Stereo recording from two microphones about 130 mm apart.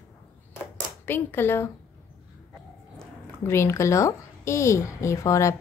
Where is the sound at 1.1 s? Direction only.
15° left (ahead or behind).